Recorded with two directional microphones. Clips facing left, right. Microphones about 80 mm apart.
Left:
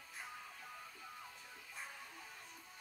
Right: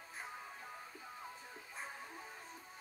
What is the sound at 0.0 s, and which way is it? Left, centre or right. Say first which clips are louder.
Music: right 3 dB; right.